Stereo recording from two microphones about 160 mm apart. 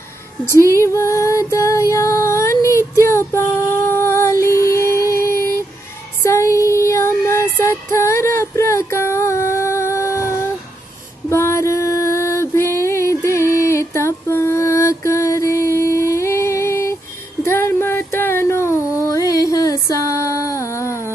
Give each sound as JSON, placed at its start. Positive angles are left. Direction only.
{"t": 0.7, "sound": "female singing", "side_deg": 15}
{"t": 6.2, "sound": "child singing", "side_deg": 20}
{"t": 11.2, "sound": "music", "side_deg": 15}
{"t": 17.5, "sound": "a sound", "side_deg": 15}